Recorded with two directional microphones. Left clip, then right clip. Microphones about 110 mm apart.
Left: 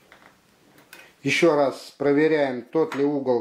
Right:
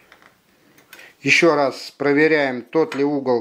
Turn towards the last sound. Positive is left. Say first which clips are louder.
# right 3 dB
turn(degrees=-40)  # may be behind; listen again after turning